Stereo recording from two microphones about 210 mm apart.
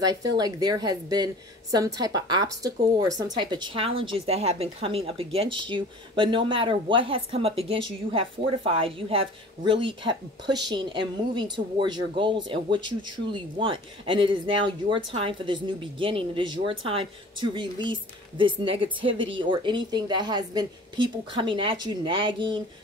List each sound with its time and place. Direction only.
0.0 s a woman's voice: 20° right (ahead or behind)